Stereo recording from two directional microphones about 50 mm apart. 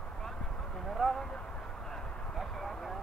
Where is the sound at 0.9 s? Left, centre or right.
Centre.